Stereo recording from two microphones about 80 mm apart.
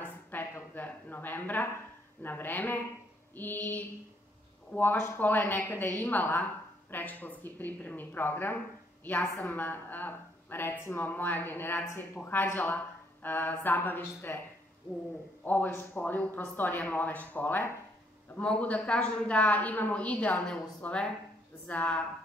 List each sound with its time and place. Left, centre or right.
0.0 s a sound: left
2.2 s a woman's voice: left
15.4 s a woman's voice: left